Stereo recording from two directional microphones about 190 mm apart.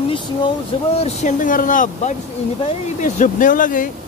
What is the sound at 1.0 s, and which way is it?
Speech, 40° left (ahead or behind).